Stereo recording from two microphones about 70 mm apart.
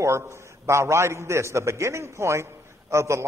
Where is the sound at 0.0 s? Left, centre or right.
Right.